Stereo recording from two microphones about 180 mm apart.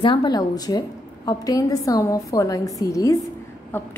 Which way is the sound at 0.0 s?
25° left (ahead or behind).